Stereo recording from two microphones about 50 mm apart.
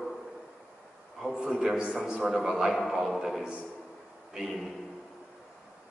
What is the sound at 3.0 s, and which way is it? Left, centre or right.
Music, centre.